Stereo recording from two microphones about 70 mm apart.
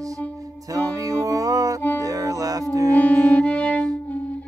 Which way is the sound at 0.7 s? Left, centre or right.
Right.